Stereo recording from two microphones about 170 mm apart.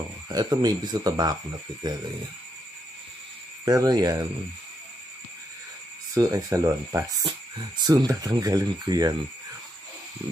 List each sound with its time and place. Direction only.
0.3 s speech: 25° right (ahead or behind)
3.6 s speech: 20° right (ahead or behind)
6.1 s speech: 20° right (ahead or behind)